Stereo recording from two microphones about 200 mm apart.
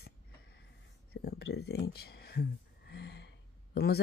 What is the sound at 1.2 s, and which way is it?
Speech, 55° left (ahead or behind).